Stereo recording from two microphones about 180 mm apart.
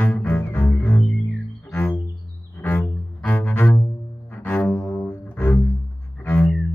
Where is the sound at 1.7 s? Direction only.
10° left (ahead or behind).